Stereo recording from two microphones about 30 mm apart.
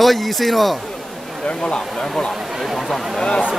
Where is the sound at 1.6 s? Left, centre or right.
Left.